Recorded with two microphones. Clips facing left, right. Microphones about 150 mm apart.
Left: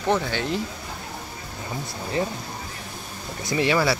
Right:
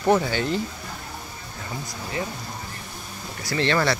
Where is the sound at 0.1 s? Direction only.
Centre (ahead or behind).